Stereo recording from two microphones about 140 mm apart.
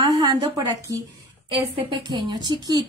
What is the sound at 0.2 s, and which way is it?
Speech, 30° right (ahead or behind).